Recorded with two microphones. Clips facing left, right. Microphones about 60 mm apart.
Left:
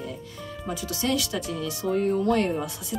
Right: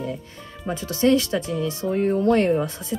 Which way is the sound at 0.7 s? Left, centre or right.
Right.